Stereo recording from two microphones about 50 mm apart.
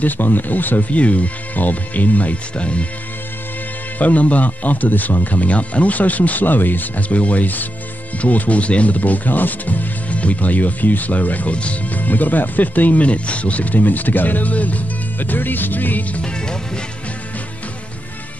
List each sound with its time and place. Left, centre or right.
0.0 s speech: left
4.0 s speech: left
16.2 s music: centre